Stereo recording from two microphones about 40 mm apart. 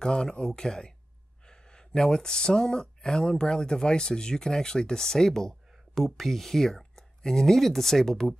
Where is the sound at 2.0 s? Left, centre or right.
Centre.